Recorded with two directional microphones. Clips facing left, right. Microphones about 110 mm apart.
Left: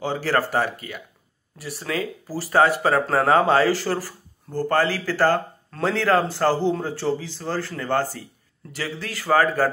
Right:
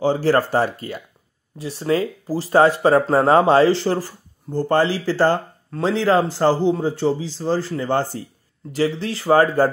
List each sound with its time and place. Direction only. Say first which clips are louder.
0.0 s speech: right 6 dB; 30° right (ahead or behind)